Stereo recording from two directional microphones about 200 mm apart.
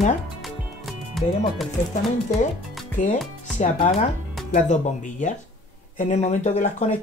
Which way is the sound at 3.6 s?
35° left (ahead or behind).